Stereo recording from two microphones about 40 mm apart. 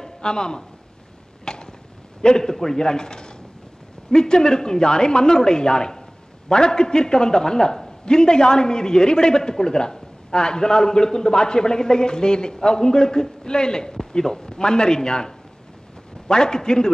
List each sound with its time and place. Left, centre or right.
0.0 s speech: centre
1.4 s a sound: centre
2.2 s a man's voice: centre